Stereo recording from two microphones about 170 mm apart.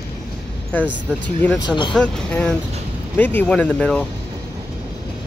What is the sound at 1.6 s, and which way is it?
Speech, 25° left (ahead or behind).